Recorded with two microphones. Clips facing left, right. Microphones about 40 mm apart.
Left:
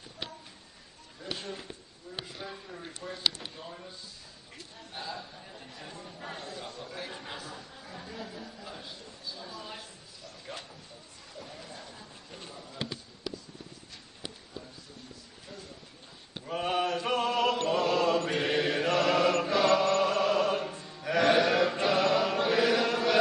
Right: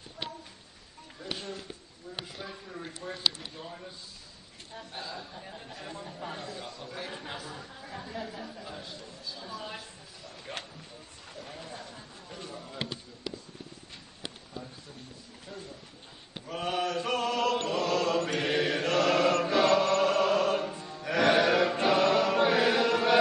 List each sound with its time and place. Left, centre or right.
2.4 s a man's voice: centre
5.4 s speech: centre
6.6 s speech: left
7.2 s speech: centre
8.2 s speech: right
8.6 s a man's voice: centre
11.6 s a sound: right
16.6 s chant: left
18.4 s mantra: centre
19.4 s choir: centre
21.0 s chant: centre